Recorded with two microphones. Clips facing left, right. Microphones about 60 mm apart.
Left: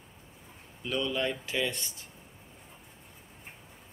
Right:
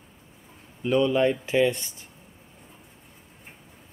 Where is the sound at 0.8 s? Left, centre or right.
Right.